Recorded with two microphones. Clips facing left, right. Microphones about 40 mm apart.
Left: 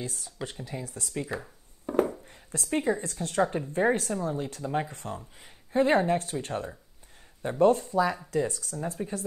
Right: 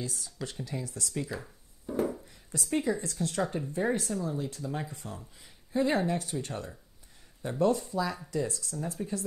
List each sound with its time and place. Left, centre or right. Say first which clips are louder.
0.0 s speech: left 1 dB; left
1.3 s speech: left 4 dB; left
1.9 s a sound: left 4 dB; left
2.8 s speech: left 2 dB; left